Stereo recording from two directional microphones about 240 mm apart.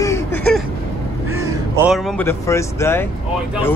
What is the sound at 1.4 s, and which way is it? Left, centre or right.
Speech, centre.